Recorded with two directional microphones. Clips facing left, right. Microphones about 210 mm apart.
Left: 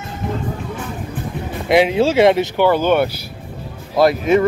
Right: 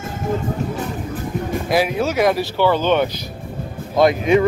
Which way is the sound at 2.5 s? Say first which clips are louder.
Left 2 dB; 10° left (ahead or behind).